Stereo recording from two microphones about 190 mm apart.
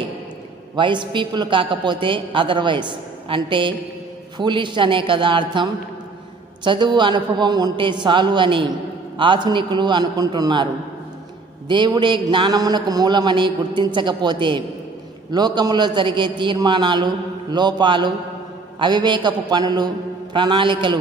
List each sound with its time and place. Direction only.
0.7 s a man's voice: 25° right (ahead or behind)